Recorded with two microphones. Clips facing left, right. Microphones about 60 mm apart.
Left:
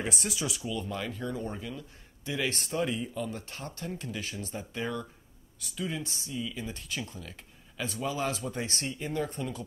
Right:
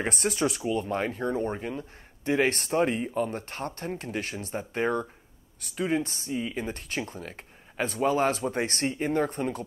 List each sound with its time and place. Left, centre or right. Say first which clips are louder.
0.0 s speech: right 6 dB; right